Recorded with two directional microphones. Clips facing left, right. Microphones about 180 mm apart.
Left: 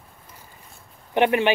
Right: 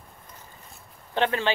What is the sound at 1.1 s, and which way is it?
Speech, 15° left (ahead or behind).